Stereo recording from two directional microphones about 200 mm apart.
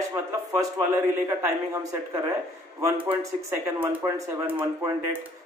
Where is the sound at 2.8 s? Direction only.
10° right (ahead or behind).